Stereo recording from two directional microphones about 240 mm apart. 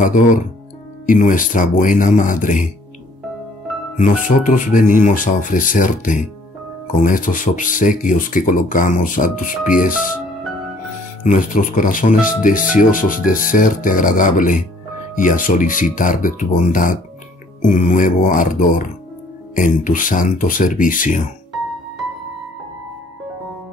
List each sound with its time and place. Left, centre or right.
0.0 s speech: left
3.9 s speech: left
11.2 s speech: left